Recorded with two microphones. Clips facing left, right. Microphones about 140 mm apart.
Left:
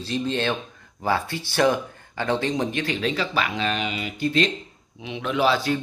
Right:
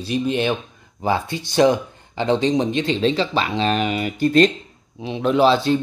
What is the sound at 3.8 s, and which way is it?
Speech, 45° right (ahead or behind).